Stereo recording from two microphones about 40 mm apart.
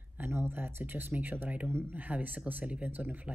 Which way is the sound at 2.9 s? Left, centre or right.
Right.